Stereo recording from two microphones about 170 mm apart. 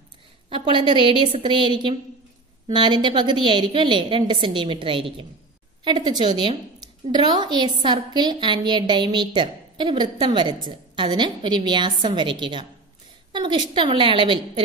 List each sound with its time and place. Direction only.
0.5 s a woman's voice: 30° right (ahead or behind)